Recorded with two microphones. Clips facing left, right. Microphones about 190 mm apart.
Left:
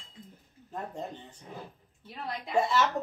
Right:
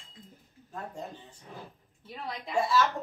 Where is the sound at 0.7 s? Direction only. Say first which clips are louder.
Left 2 dB; 20° left (ahead or behind).